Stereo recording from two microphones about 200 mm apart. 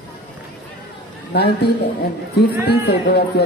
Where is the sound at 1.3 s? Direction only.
55° left (ahead or behind).